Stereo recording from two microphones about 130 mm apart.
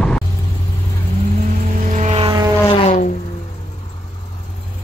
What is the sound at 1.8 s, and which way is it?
Vehicle, 65° right (ahead or behind).